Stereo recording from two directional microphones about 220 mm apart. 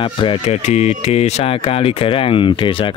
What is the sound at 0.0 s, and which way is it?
Speech, 25° left (ahead or behind).